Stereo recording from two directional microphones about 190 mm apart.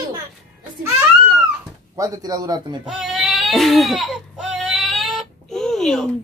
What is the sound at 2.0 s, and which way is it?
Speech, 20° right (ahead or behind).